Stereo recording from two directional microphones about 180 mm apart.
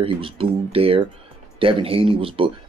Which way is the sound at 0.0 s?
30° right (ahead or behind).